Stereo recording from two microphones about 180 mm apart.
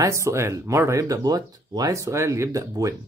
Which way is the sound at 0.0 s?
15° right (ahead or behind).